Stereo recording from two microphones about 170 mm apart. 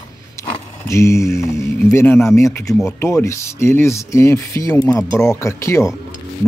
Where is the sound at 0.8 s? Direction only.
15° left (ahead or behind).